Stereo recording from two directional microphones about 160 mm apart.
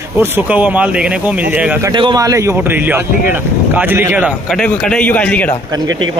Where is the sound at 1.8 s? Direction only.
30° right (ahead or behind); by 4.3 s 10° right (ahead or behind).